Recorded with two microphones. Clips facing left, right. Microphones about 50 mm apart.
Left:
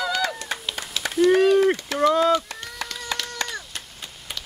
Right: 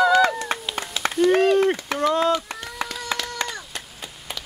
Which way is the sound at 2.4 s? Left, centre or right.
Centre.